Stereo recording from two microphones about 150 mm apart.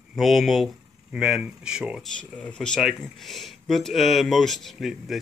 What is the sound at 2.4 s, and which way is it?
Speech, 5° left (ahead or behind).